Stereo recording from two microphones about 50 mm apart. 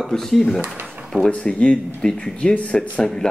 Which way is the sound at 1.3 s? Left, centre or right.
Left.